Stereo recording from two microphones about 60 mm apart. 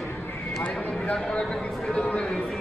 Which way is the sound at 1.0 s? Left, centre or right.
Centre.